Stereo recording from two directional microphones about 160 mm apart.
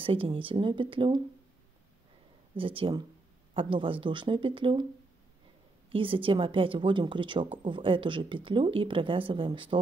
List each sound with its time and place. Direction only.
0.0 s a woman's voice: 35° right (ahead or behind)
2.5 s a woman's voice: 35° right (ahead or behind)
5.9 s a woman's voice: 35° right (ahead or behind)